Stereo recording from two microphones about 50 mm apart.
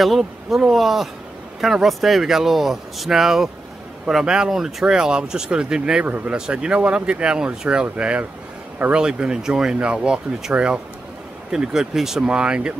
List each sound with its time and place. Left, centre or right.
0.0 s speech: centre
6.0 s speech: right
6.3 s speech: centre
12.2 s speech: centre